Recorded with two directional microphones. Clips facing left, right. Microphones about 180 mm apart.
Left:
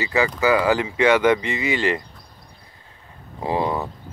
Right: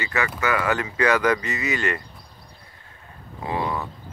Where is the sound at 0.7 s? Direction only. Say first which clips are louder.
Left 4 dB; 25° left (ahead or behind).